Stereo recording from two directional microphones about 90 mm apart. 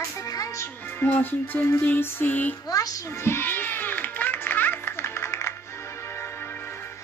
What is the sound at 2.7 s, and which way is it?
Speech, 45° left (ahead or behind).